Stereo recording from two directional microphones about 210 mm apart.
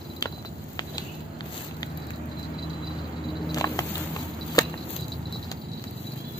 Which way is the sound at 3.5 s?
15° left (ahead or behind).